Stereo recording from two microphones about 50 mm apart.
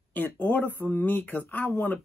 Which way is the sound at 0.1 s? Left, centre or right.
Left.